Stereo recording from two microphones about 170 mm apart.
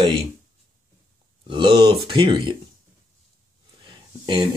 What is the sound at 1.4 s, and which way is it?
Speech, 30° right (ahead or behind).